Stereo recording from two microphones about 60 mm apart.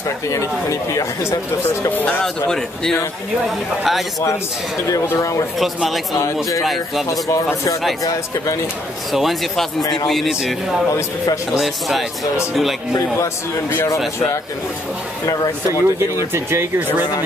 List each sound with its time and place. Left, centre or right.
0.3 s speech: left
2.4 s speech: centre
3.4 s speech: centre
5.1 s speech: left
6.6 s speech: centre
7.1 s speech: left
9.1 s speech: centre
10.9 s speech: left
11.5 s speech: centre
13.2 s a man's voice: left
15.2 s speech: left
16.3 s speech: right